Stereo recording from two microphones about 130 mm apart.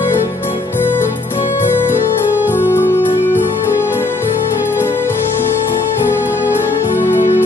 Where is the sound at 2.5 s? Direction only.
15° left (ahead or behind).